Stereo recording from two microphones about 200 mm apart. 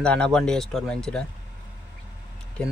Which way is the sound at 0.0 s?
5° left (ahead or behind).